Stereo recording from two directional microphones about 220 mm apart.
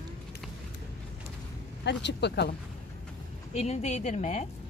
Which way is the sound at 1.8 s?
50° left (ahead or behind).